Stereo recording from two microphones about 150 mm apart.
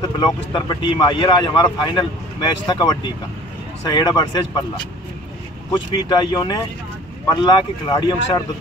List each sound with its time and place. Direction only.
0.2 s speech: 30° left (ahead or behind)
5.7 s speech: 30° left (ahead or behind)